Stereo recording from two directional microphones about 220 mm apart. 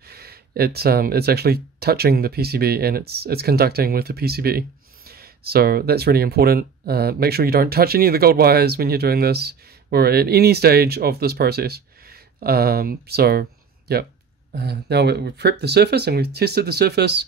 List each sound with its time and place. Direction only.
0.1 s speech: 45° right (ahead or behind)